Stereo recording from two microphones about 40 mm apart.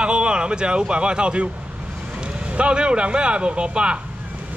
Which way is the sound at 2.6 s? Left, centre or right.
Right.